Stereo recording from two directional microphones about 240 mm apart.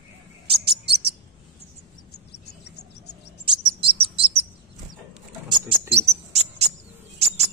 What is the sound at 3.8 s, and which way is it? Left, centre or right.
Chirp, right.